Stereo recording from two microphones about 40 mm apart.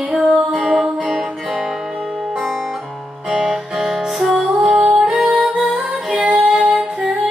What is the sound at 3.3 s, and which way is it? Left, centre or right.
Music, centre.